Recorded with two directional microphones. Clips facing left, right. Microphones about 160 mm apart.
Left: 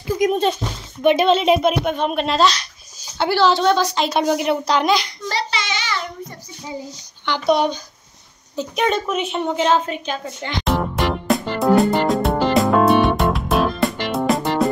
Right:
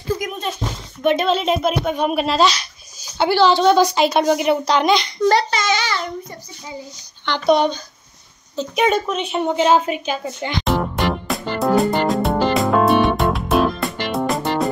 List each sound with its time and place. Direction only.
1.0 s speech: 5° left (ahead or behind)
3.7 s a woman's voice: 10° right (ahead or behind)
4.1 s speech: centre (ahead or behind)
5.3 s a sound: 45° right (ahead or behind)
7.2 s speech: 5° left (ahead or behind)
8.7 s a woman's voice: 5° right (ahead or behind)
10.6 s music: centre (ahead or behind)